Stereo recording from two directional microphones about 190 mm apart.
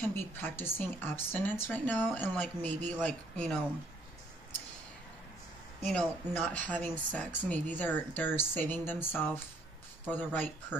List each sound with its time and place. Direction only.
0.1 s speech: 10° left (ahead or behind)
5.9 s speech: 5° left (ahead or behind)